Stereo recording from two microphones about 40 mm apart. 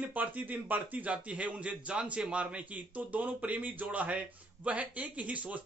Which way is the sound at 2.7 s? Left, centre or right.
Right.